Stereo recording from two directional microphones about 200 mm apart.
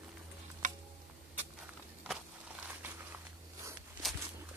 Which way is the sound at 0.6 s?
40° right (ahead or behind).